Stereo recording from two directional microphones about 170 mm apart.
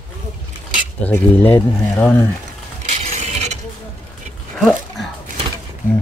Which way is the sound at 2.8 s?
40° right (ahead or behind).